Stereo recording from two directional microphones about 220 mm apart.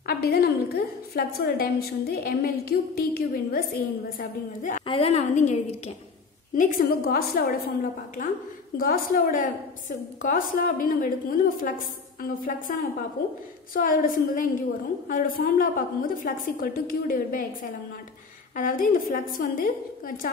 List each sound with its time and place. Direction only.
0.0 s a woman's voice: 45° left (ahead or behind)
8.7 s a woman's voice: 40° left (ahead or behind)
13.7 s a woman's voice: 40° left (ahead or behind)
18.6 s a woman's voice: 40° left (ahead or behind)